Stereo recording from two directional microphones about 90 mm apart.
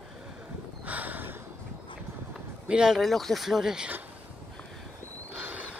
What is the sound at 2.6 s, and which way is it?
Speech, 10° right (ahead or behind).